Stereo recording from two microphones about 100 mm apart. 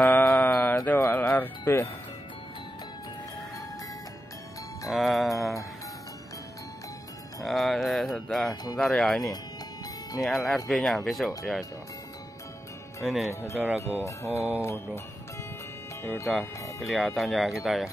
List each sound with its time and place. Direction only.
0.0 s mantra: 15° left (ahead or behind)
1.1 s music: 15° left (ahead or behind)
4.8 s mantra: centre (ahead or behind)
7.4 s mantra: centre (ahead or behind)
13.0 s mantra: centre (ahead or behind)
13.3 s speech: 30° left (ahead or behind)
13.7 s music: 30° left (ahead or behind)
16.0 s speech: 25° left (ahead or behind)
16.8 s mantra: centre (ahead or behind)